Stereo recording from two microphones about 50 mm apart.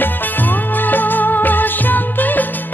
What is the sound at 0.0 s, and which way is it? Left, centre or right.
Music, left.